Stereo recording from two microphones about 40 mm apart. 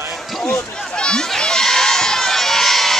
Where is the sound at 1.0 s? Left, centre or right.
Centre.